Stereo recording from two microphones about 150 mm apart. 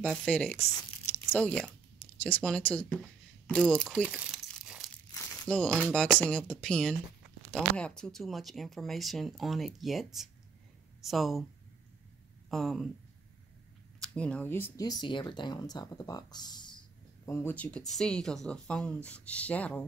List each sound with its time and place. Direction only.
0.0 s speech: 5° left (ahead or behind)
0.6 s tearing: 15° left (ahead or behind)
2.2 s speech: 10° left (ahead or behind)
4.0 s crumpling: 5° right (ahead or behind)
5.1 s crumpling: 20° left (ahead or behind)
5.5 s speech: 5° left (ahead or behind)
12.4 s speech: centre (ahead or behind)
13.9 s speech: 5° left (ahead or behind)
14.9 s speech: 30° left (ahead or behind)
17.3 s speech: 15° left (ahead or behind)